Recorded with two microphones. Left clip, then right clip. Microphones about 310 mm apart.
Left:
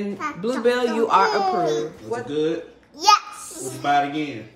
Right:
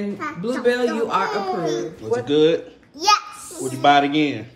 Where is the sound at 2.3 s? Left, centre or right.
Centre.